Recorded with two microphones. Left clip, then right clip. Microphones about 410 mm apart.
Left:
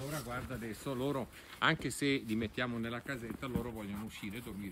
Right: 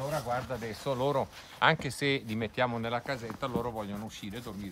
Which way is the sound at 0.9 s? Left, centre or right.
Right.